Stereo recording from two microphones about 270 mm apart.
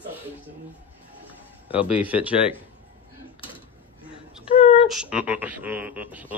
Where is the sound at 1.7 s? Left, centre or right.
Centre.